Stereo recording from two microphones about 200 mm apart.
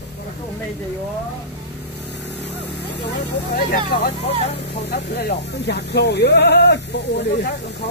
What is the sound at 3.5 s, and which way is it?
Speech, 50° left (ahead or behind).